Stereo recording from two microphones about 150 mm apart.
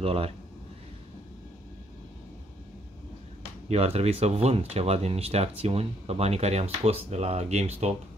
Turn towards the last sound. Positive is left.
turn(degrees=-45)  # may be behind; listen again after turning